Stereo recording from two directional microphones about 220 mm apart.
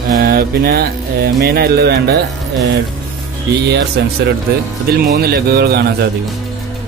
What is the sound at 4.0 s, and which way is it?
Music, 50° right (ahead or behind).